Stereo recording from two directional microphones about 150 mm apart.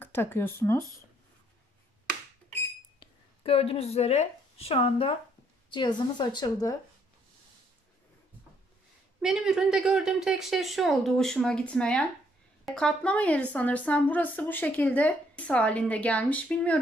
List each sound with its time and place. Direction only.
0.0 s speech: 15° left (ahead or behind)
3.0 s a woman's voice: 40° left (ahead or behind)
9.2 s a woman's voice: 5° right (ahead or behind)